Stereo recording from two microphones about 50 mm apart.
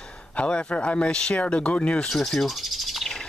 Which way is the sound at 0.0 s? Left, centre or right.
Left.